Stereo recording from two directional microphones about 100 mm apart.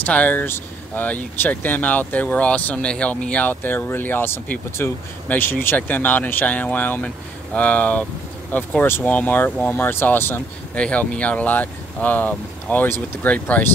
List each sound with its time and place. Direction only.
0.0 s speech: 15° left (ahead or behind)